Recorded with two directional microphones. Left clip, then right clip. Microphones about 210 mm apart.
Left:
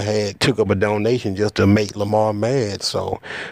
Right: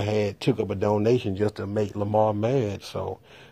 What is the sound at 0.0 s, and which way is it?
Speech, 35° left (ahead or behind).